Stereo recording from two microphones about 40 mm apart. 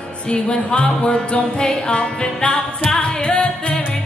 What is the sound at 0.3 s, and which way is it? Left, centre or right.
Music, left.